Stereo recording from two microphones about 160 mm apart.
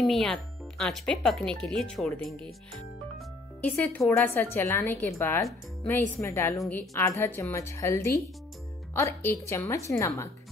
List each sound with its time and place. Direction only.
0.0 s speech: centre (ahead or behind)
4.0 s speech: 10° left (ahead or behind)